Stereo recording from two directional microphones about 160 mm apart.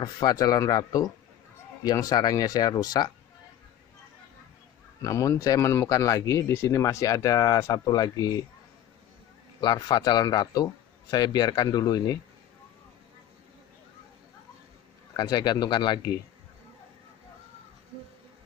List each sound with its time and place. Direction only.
0.0 s speech: 25° left (ahead or behind)
5.0 s speech: 20° left (ahead or behind)
9.6 s speech: 25° left (ahead or behind)
15.1 s speech: 25° left (ahead or behind)